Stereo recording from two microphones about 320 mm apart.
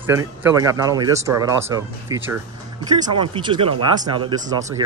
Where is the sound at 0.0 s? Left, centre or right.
Centre.